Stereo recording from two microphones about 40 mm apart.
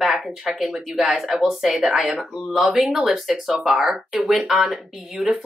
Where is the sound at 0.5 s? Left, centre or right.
Centre.